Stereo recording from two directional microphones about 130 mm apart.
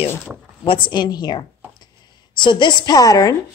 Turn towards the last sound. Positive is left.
turn(degrees=30)  # may be behind; listen again after turning